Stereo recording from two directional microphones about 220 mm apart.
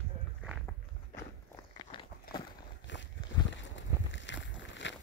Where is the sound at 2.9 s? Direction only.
55° left (ahead or behind).